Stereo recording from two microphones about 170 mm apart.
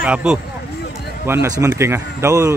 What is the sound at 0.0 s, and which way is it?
A man's voice, 5° right (ahead or behind).